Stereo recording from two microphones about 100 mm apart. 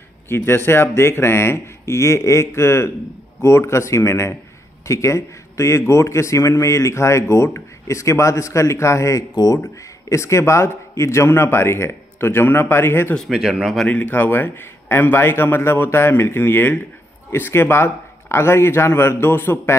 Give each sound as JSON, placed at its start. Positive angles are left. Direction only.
{"t": 0.3, "sound": "a man's voice", "side_deg": 25}
{"t": 9.3, "sound": "speech", "side_deg": 40}
{"t": 9.6, "sound": "a man's voice", "side_deg": 30}
{"t": 13.3, "sound": "speech", "side_deg": -5}
{"t": 13.8, "sound": "a man's voice", "side_deg": 15}